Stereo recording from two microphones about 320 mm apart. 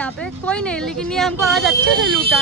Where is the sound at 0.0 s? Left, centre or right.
Centre.